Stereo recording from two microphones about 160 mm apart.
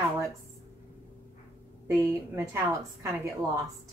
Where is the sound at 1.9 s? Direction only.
15° right (ahead or behind).